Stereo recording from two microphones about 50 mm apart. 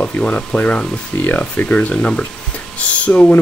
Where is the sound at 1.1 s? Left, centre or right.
Left.